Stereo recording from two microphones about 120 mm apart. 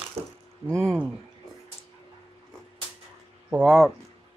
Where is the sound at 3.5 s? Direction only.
10° right (ahead or behind).